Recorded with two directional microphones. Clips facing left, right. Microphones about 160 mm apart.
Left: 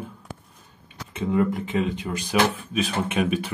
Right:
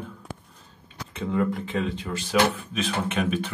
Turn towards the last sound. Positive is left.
turn(degrees=10)  # may be behind; listen again after turning